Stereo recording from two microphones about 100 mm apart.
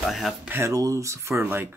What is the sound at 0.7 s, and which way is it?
Speech, 35° right (ahead or behind).